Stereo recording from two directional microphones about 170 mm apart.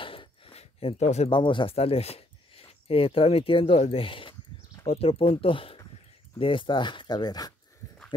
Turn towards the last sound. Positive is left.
turn(degrees=25)  # may be behind; listen again after turning